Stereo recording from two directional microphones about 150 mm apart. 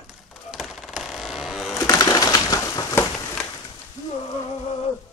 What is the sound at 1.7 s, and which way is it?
Bird, 25° left (ahead or behind).